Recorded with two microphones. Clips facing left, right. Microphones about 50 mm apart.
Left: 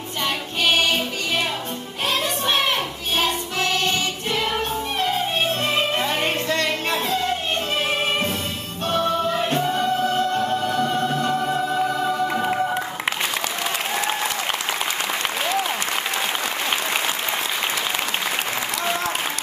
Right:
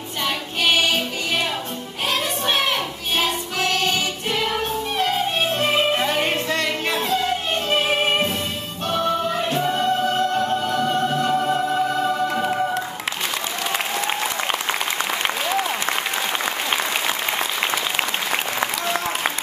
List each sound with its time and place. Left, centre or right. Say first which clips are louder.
3.2 s music: even; right
5.0 s music: right 1 dB; right
9.6 s music: even; centre
10.0 s music: right 1 dB; right